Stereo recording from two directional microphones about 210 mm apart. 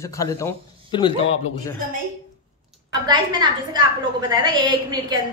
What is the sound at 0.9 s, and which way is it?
Speech, 25° left (ahead or behind).